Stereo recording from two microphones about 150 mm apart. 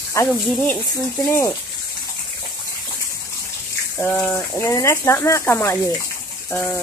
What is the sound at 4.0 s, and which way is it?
Speech, 5° left (ahead or behind).